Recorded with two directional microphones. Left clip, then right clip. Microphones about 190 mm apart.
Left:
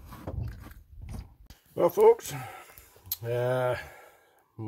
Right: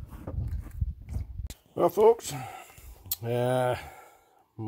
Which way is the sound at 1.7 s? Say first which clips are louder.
Left 1 dB; 15° right (ahead or behind).